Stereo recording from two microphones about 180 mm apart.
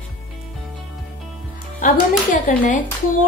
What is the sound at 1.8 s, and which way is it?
A woman's voice, 50° left (ahead or behind).